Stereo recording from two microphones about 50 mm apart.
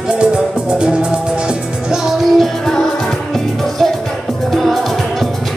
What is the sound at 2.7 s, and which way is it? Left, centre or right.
Music, centre.